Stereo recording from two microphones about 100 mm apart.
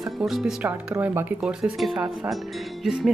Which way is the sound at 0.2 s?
5° right (ahead or behind).